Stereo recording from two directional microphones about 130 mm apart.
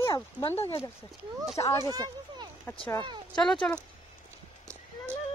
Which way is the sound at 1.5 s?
20° left (ahead or behind).